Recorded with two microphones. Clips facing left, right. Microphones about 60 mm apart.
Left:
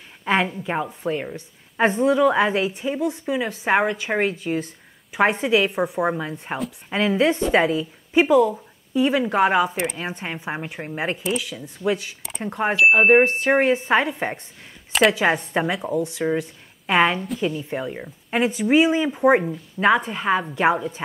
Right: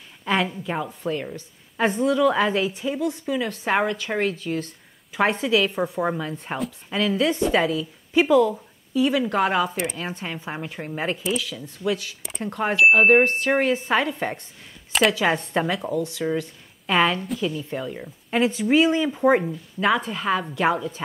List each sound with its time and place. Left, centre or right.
0.2 s a woman's voice: left
6.9 s a woman's voice: left
11.8 s a woman's voice: left
12.2 s a sound: centre
12.7 s speech: centre
13.2 s a woman's voice: centre
14.9 s a sound: centre
15.1 s a woman's voice: centre